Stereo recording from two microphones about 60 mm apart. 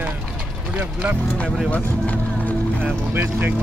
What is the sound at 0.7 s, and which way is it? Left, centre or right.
Speech, right.